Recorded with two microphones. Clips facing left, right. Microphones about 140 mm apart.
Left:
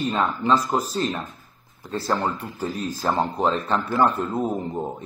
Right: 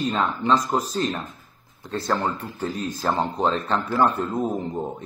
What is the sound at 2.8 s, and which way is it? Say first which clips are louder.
Speech: even; 30° left (ahead or behind).